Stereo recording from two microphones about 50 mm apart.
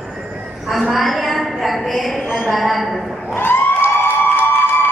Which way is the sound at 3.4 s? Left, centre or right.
Left.